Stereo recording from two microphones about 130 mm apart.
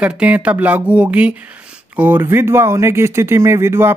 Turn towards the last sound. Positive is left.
turn(degrees=-20)  # may be behind; listen again after turning